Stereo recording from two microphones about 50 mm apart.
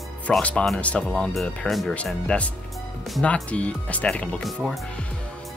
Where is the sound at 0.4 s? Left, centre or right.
Left.